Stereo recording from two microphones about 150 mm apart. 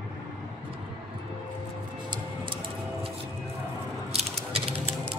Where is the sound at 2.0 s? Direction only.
35° right (ahead or behind).